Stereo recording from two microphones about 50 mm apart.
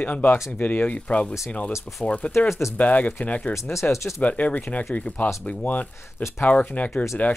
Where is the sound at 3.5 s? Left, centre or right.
Left.